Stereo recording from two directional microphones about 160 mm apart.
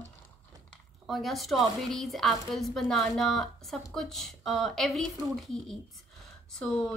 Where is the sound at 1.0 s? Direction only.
Centre (ahead or behind).